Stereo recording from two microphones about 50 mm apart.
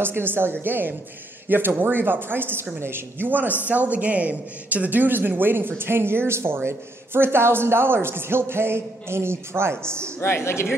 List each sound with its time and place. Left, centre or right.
0.0 s a man's voice: right
10.2 s speech: left